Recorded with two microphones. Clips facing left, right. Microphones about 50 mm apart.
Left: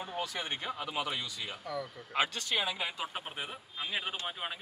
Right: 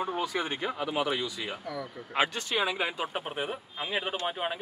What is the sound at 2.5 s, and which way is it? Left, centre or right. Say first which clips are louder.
Speech: right 5 dB; centre.